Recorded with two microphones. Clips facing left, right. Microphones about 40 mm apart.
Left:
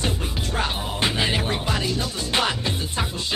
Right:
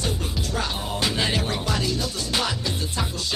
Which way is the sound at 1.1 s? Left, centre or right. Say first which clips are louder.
Left 1 dB; centre.